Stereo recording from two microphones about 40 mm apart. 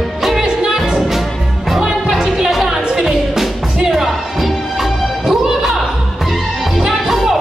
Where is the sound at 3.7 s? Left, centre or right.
Centre.